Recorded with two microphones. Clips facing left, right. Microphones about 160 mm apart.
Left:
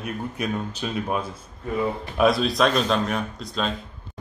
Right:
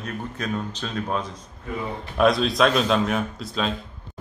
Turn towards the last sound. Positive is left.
turn(degrees=0)  # may be behind; listen again after turning